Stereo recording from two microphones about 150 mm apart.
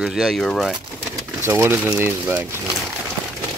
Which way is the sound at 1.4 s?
15° right (ahead or behind).